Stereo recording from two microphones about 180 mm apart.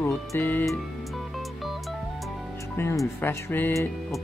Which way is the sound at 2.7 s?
15° left (ahead or behind).